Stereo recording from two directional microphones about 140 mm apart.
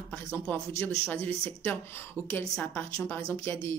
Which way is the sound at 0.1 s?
15° left (ahead or behind).